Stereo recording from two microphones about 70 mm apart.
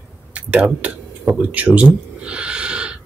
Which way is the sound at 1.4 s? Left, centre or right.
Right.